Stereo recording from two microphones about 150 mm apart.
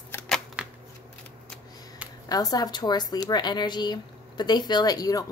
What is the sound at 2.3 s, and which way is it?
Speech, 25° left (ahead or behind).